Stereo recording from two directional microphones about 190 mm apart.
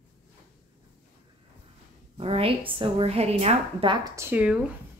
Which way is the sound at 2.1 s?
30° right (ahead or behind).